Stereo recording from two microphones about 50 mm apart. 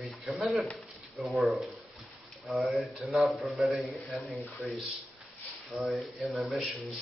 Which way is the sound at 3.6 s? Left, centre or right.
Centre.